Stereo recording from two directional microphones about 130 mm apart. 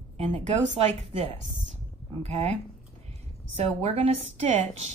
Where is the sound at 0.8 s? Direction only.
50° right (ahead or behind).